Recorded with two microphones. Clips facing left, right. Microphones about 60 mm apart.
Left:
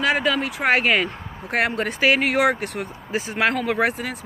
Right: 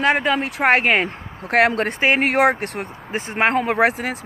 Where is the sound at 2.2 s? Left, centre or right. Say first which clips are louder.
Right 3 dB; right.